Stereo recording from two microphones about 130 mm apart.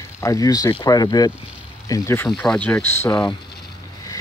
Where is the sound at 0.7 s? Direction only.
30° left (ahead or behind).